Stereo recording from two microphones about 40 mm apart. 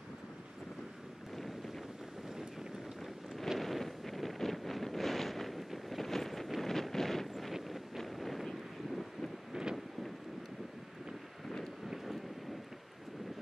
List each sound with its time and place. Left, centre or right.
3.5 s wind noise: centre
7.5 s wind noise: centre
8.0 s a sound: centre
8.5 s wind noise: centre
9.5 s wind noise: centre